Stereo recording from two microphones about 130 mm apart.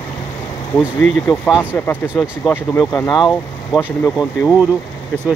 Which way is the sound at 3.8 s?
5° right (ahead or behind).